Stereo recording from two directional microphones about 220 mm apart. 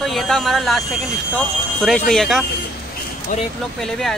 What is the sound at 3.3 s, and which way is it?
Speech, 35° left (ahead or behind).